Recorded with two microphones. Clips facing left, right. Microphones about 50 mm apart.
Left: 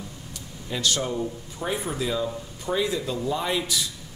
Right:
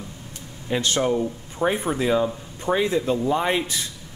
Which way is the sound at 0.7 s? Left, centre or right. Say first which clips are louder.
Right 5 dB; right.